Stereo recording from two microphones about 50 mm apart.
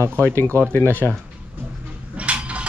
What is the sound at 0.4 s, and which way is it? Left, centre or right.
Speech, left.